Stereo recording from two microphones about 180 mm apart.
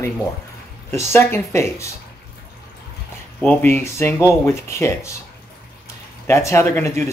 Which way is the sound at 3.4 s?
10° left (ahead or behind).